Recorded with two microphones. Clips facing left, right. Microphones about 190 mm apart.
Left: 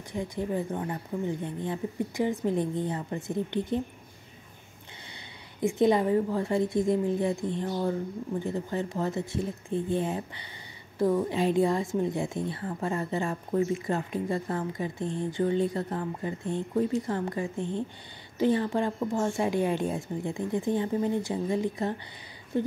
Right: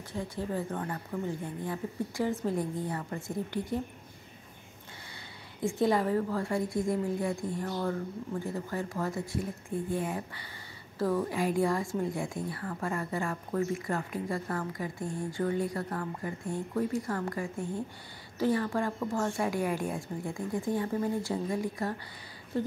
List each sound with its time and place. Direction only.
0.1 s a woman's voice: 15° left (ahead or behind)
5.6 s a woman's voice: 20° left (ahead or behind)
22.5 s a sound: 20° left (ahead or behind)